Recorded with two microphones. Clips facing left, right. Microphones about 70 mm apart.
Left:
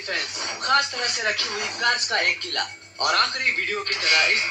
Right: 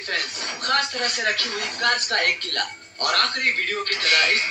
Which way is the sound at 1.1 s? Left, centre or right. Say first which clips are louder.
Right 1 dB; centre.